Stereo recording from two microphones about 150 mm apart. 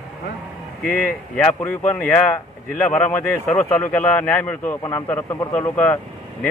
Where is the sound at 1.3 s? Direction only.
10° left (ahead or behind).